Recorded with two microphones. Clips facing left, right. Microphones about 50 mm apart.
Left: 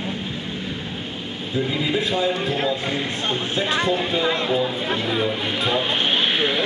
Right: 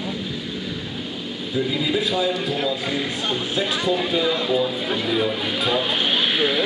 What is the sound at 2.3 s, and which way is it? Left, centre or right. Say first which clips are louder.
Speech: left 1 dB; left.